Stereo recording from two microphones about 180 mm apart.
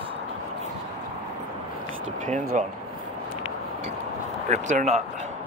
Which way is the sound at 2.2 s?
45° right (ahead or behind).